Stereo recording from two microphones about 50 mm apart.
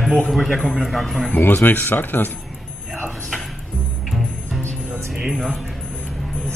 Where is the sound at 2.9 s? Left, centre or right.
Centre.